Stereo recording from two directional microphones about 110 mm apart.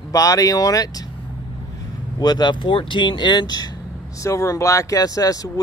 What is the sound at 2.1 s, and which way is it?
Speech, 40° left (ahead or behind).